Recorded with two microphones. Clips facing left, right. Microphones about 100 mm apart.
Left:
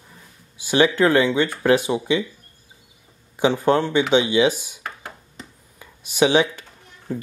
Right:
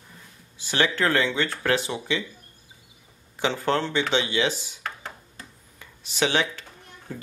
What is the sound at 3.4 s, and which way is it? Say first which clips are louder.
Speech: left 6 dB; 15° left (ahead or behind).